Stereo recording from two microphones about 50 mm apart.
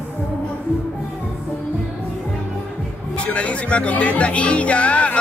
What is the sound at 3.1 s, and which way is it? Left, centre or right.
Speech, left.